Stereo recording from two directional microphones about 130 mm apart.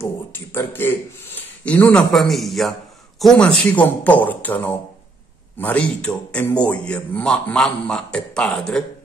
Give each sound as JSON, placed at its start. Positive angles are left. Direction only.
{"t": 0.0, "sound": "a man's voice", "side_deg": 15}